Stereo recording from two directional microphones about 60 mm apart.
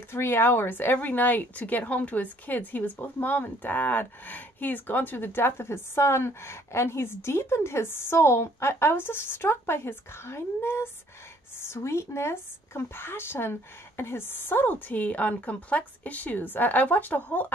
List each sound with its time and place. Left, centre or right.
0.1 s speech: left